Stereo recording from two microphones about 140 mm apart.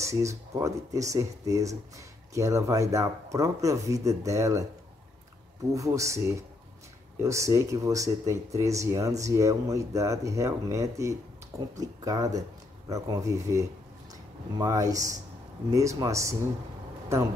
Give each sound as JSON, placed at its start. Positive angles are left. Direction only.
{"t": 0.0, "sound": "speech", "side_deg": -20}
{"t": 5.8, "sound": "speech", "side_deg": -20}